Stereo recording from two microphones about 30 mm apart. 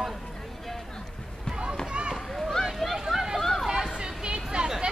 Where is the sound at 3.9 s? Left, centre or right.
Right.